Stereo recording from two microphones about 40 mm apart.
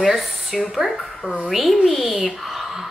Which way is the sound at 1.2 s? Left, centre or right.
Right.